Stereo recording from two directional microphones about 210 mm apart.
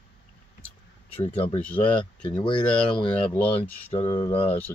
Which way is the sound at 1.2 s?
25° left (ahead or behind).